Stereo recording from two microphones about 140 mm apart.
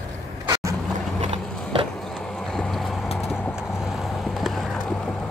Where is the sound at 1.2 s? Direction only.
40° right (ahead or behind).